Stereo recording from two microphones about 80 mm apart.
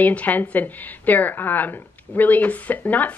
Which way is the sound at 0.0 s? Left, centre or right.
Centre.